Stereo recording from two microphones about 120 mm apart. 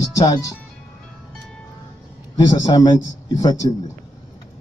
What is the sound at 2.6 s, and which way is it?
Speech, 35° left (ahead or behind).